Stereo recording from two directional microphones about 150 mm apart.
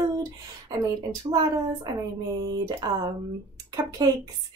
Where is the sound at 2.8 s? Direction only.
30° right (ahead or behind).